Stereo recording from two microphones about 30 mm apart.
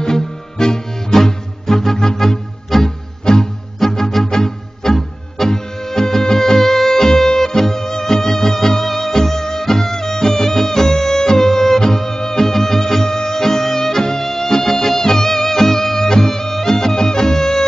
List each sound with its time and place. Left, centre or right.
0.0 s music: left
3.3 s music: left
3.8 s music: centre